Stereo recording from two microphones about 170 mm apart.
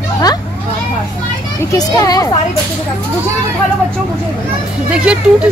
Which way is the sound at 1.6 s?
20° left (ahead or behind).